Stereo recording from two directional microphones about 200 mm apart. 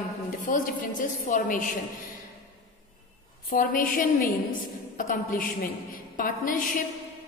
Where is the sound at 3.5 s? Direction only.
45° left (ahead or behind).